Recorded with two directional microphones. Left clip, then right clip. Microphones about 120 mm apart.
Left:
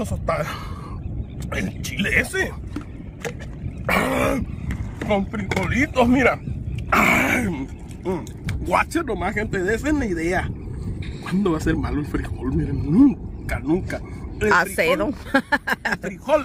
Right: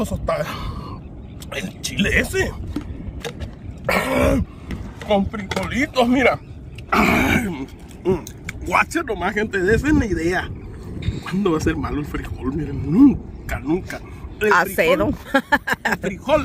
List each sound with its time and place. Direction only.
0.0 s speech: 25° right (ahead or behind)
1.5 s speech: 30° right (ahead or behind)
3.8 s wild animals: 10° right (ahead or behind)
5.0 s speech: 30° right (ahead or behind)
6.9 s speech: centre (ahead or behind)